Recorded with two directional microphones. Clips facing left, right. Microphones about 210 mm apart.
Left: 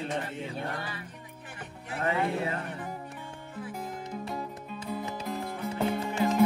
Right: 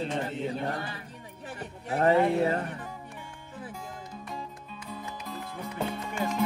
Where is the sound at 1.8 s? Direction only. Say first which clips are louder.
Right 7 dB; 40° right (ahead or behind).